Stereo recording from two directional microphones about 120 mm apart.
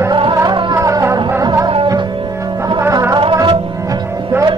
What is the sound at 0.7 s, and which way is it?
Music, 25° right (ahead or behind).